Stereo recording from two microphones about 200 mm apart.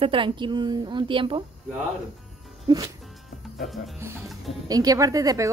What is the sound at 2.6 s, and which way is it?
Music, 20° right (ahead or behind).